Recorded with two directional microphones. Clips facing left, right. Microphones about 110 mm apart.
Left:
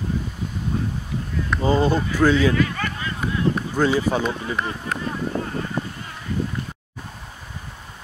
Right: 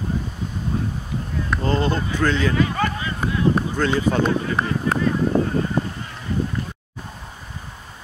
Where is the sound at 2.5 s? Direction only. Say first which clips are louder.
Right 2 dB; 30° right (ahead or behind).